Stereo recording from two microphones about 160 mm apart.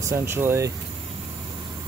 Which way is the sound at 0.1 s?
15° right (ahead or behind).